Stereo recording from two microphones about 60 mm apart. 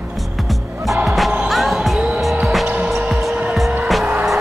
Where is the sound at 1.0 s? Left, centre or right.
Centre.